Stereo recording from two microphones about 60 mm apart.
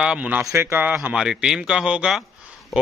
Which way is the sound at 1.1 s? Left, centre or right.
Centre.